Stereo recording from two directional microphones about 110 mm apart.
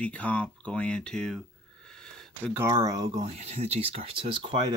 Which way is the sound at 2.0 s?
5° left (ahead or behind).